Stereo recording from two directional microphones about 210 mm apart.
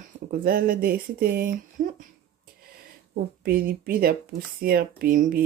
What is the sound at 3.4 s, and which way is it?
Speech, 45° right (ahead or behind).